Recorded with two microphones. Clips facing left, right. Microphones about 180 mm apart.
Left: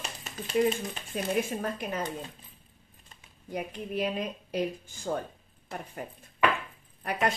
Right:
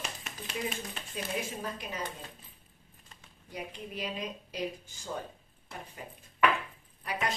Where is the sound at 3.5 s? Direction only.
55° left (ahead or behind).